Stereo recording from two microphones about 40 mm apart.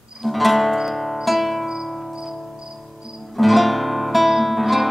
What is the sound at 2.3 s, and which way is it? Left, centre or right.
Cricket, centre.